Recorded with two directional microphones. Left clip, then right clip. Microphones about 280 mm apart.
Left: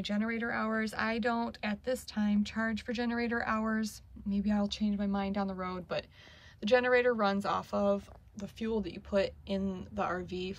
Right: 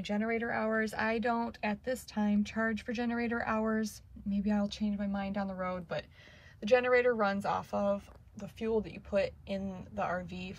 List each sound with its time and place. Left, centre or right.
0.0 s speech: centre